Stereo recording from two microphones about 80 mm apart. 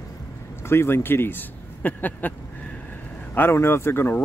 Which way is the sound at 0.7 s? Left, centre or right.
Left.